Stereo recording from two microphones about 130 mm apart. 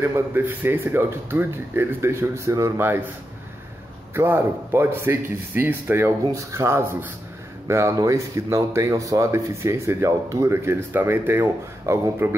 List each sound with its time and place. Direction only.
0.0 s speech: 15° right (ahead or behind)
4.1 s speech: 20° right (ahead or behind)